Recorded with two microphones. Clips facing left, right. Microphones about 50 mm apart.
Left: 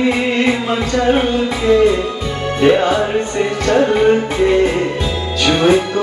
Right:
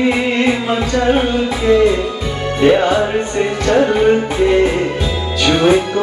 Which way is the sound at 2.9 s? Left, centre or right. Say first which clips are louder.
Right 1 dB; centre.